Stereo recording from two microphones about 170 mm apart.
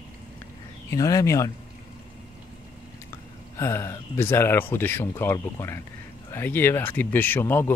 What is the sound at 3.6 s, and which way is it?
Speech, 15° left (ahead or behind).